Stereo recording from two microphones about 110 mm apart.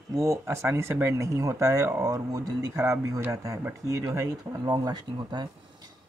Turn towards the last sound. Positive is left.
turn(degrees=-40)  # may be behind; listen again after turning